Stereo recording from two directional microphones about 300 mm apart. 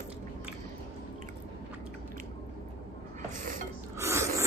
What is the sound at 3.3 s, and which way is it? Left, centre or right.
Dishes, right.